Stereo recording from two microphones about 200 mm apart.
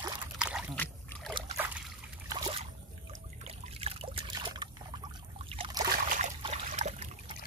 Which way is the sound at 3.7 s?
30° right (ahead or behind).